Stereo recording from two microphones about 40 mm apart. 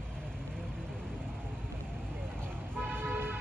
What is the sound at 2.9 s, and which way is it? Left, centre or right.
Car, right.